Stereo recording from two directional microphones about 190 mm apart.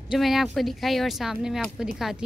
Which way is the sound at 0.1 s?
Centre (ahead or behind).